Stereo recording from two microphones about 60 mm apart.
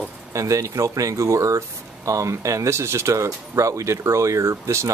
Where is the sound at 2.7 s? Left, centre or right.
Right.